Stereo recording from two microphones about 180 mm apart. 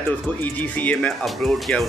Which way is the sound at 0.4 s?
10° left (ahead or behind).